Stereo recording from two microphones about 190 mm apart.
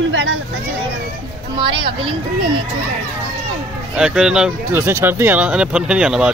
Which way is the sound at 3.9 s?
5° right (ahead or behind).